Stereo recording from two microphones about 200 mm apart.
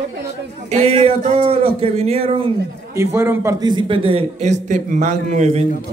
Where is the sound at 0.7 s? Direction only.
35° right (ahead or behind).